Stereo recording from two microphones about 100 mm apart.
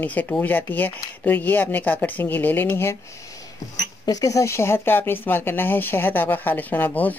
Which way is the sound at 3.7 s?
40° left (ahead or behind).